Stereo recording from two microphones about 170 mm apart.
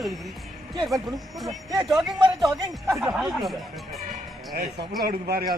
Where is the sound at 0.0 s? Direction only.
Centre (ahead or behind).